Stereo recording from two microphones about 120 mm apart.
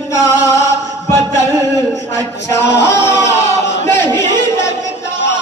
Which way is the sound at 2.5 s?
25° left (ahead or behind).